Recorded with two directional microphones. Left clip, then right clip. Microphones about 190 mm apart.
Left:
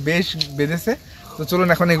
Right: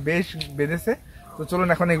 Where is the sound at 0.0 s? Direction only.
Centre (ahead or behind).